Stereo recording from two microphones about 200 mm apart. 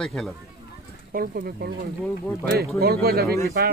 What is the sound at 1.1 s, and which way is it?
Speech, 45° right (ahead or behind).